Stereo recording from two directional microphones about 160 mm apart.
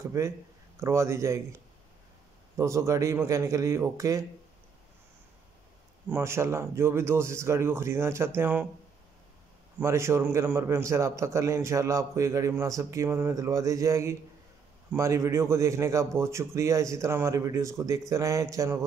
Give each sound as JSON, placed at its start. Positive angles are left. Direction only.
{"t": 0.0, "sound": "speech", "side_deg": -15}
{"t": 2.5, "sound": "a man's voice", "side_deg": -20}
{"t": 6.0, "sound": "speech", "side_deg": -15}
{"t": 9.8, "sound": "a man's voice", "side_deg": -15}